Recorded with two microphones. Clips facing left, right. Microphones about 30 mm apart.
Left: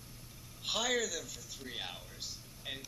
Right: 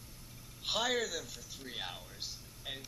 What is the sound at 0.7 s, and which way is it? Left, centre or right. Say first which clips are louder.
Speech: even; centre.